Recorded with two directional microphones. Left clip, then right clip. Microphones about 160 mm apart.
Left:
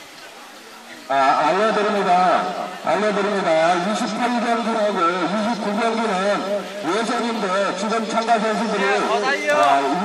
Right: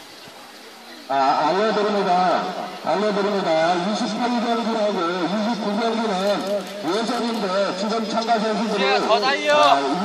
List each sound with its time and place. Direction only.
1.1 s a man's voice: 5° right (ahead or behind)
9.1 s speech: 65° right (ahead or behind)
9.6 s speech: 15° right (ahead or behind)